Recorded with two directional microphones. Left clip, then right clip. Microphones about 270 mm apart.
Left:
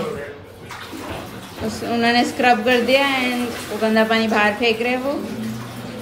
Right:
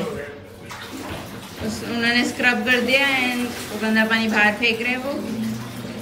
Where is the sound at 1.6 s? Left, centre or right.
Centre.